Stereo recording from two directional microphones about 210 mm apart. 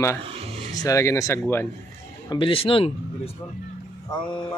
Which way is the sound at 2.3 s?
25° left (ahead or behind).